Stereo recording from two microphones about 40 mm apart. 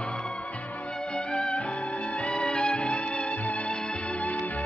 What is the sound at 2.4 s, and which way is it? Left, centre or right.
Music, left.